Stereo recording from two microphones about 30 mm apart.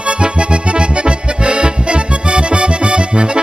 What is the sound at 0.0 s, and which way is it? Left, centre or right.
Accordion, right.